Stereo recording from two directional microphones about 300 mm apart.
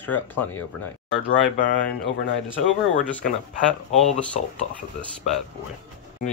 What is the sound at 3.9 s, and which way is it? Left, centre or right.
Speech, centre.